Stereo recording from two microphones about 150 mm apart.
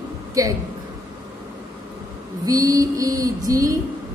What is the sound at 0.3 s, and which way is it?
Speech, 20° right (ahead or behind).